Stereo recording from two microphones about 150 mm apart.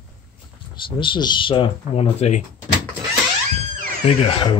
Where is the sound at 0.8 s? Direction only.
35° left (ahead or behind).